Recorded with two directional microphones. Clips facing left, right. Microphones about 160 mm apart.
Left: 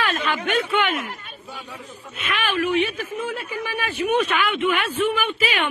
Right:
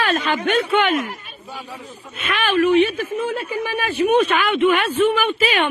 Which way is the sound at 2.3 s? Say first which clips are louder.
Right 6 dB; 40° right (ahead or behind).